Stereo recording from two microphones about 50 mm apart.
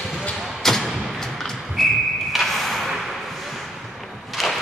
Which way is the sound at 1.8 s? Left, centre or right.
Centre.